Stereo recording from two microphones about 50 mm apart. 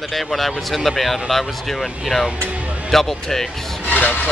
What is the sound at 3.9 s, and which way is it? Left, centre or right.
Speech, left.